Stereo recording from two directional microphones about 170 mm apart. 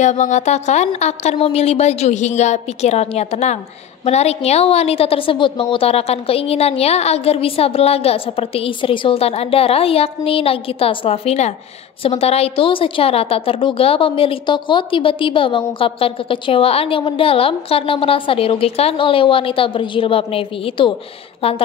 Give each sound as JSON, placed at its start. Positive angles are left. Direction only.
{"t": 0.0, "sound": "a woman's voice", "side_deg": 45}